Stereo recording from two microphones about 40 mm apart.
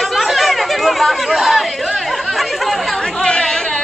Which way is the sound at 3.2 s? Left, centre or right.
Centre.